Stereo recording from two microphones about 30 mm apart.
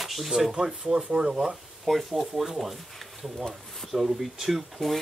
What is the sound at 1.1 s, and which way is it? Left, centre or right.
Speech, right.